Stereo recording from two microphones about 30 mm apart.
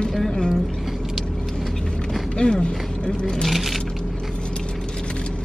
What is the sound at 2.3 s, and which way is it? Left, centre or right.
Speech, left.